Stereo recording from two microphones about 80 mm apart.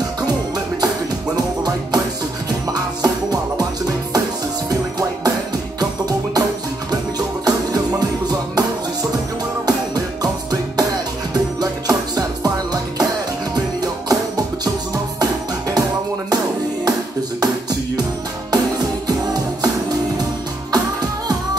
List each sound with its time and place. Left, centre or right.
1.3 s music: right
4.6 s music: right
9.7 s music: right
18.5 s music: right